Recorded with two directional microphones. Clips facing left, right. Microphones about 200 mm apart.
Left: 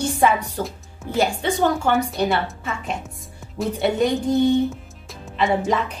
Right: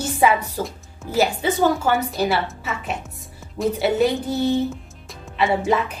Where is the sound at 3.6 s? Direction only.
5° right (ahead or behind).